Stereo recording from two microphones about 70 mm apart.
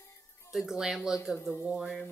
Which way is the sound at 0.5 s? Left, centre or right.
Centre.